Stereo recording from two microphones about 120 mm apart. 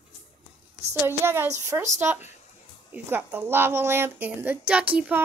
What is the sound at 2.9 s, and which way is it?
A woman's voice, 15° right (ahead or behind).